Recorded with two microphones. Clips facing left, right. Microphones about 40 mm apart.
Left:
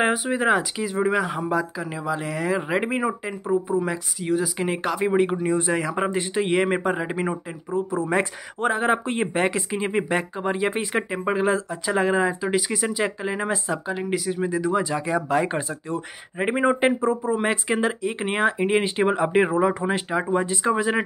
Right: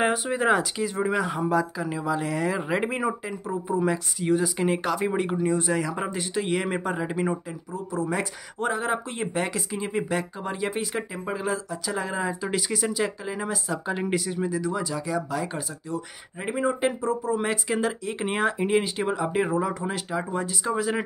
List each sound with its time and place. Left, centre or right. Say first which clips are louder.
0.0 s speech: left 2 dB; centre; by 12.4 s left
12.4 s speech: left 3 dB; centre
13.8 s speech: right 1 dB; centre
14.4 s speech: left 4 dB; left